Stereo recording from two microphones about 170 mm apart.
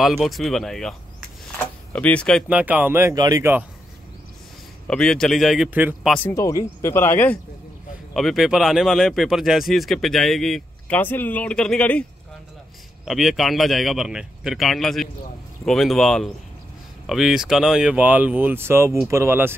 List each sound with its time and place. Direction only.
0.0 s speech: centre (ahead or behind)
1.6 s a sound: 10° left (ahead or behind)
2.4 s speech: 10° right (ahead or behind)
4.8 s speech: 5° left (ahead or behind)
5.7 s speech: 10° right (ahead or behind)
6.0 s speech: 10° left (ahead or behind)
8.1 s speech: centre (ahead or behind)
13.0 s speech: centre (ahead or behind)